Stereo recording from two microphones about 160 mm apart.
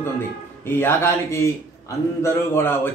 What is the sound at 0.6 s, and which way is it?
A man's voice, 15° left (ahead or behind).